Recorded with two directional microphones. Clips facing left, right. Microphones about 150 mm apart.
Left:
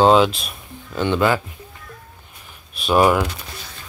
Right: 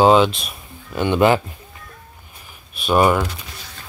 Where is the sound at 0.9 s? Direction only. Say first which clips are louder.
Right 3 dB; 15° right (ahead or behind).